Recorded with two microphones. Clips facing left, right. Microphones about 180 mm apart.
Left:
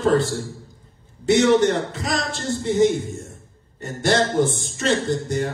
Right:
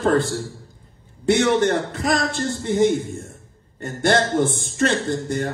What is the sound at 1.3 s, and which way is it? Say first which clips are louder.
A man's voice: left 1 dB; 55° right (ahead or behind).